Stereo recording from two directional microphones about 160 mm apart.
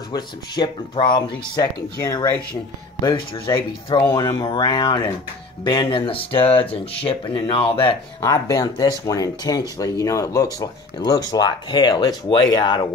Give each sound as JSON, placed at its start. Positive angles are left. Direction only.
{"t": 0.1, "sound": "speech", "side_deg": 25}
{"t": 8.2, "sound": "speech", "side_deg": 20}